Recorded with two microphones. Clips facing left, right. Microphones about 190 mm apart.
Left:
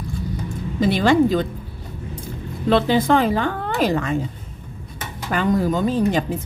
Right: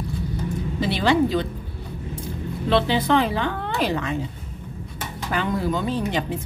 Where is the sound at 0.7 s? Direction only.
50° left (ahead or behind).